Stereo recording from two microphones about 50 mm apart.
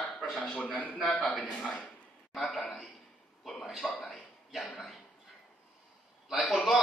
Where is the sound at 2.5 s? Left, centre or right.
Centre.